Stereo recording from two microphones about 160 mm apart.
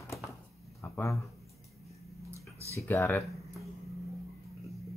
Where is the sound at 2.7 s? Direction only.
15° left (ahead or behind).